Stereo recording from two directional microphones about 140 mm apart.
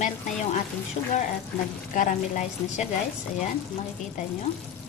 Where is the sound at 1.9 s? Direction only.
65° left (ahead or behind).